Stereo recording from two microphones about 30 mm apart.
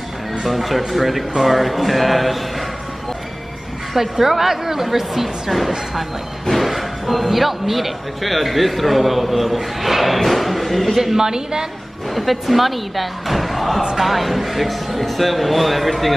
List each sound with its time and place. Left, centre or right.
0.4 s speech: centre
3.9 s a woman's voice: centre
6.4 s speech: centre
11.1 s a woman's voice: centre
12.1 s speech: centre